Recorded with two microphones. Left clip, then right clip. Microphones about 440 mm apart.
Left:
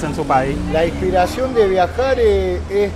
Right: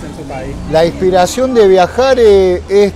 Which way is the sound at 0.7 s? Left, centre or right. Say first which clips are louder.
Right 7 dB; right.